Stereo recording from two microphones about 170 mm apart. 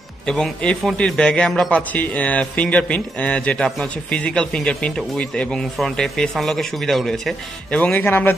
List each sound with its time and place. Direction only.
0.3 s a man's voice: 5° left (ahead or behind)